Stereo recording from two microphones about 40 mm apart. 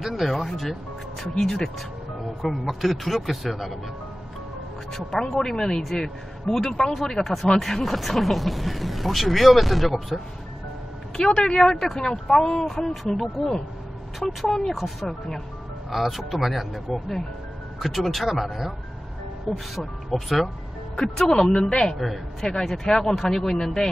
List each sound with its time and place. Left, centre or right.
0.0 s speech: centre
2.4 s speech: centre
4.9 s speech: centre
11.3 s speech: left
11.6 s speech: centre
21.3 s speech: centre
21.9 s speech: centre